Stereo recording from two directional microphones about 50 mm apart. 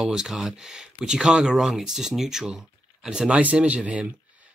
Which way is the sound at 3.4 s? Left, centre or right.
Right.